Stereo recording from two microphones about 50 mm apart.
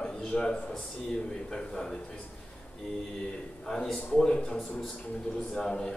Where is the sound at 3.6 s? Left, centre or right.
Centre.